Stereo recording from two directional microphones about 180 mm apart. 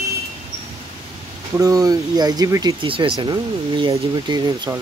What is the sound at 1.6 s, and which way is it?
Speech, 20° right (ahead or behind).